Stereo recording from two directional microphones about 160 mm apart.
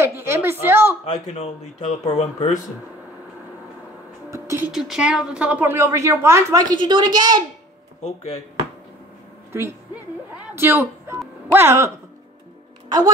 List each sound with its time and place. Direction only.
0.2 s a sound: 15° right (ahead or behind)
1.0 s speech: 45° left (ahead or behind)
4.3 s speech: 20° right (ahead or behind)
4.7 s a woman's voice: 5° right (ahead or behind); by 7.3 s 25° right (ahead or behind)
8.0 s speech: 45° left (ahead or behind)
9.5 s a woman's voice: 15° right (ahead or behind)